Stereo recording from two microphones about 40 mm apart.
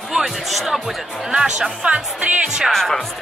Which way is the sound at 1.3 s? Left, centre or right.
Centre.